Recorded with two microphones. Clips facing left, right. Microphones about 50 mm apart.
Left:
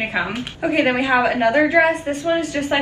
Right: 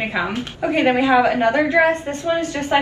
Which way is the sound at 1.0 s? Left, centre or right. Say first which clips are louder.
Right 2 dB; left.